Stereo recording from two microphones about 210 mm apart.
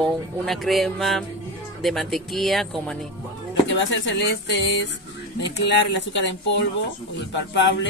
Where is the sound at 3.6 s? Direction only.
60° left (ahead or behind).